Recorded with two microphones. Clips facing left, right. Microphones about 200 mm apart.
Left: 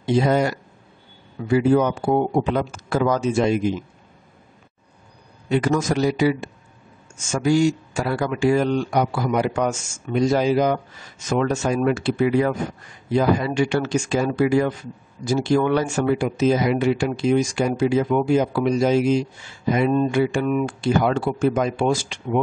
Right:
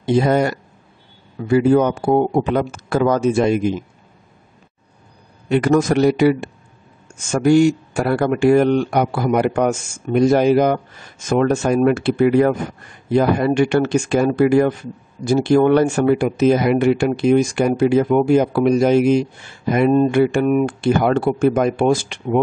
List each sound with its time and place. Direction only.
0.0 s speech: 55° right (ahead or behind)
1.6 s speech: 50° right (ahead or behind)
5.5 s speech: 60° right (ahead or behind)